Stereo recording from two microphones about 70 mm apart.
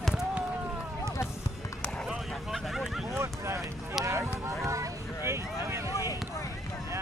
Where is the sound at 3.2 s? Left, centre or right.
Right.